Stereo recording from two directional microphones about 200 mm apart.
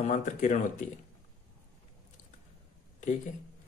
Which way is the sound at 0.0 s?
35° left (ahead or behind).